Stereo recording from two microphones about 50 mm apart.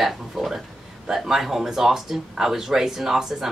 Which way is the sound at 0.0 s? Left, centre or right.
Centre.